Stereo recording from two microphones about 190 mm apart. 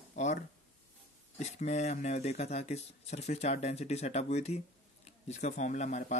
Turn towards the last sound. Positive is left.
turn(degrees=40)  # may be behind; listen again after turning